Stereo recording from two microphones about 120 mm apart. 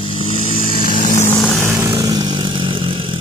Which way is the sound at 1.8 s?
30° right (ahead or behind).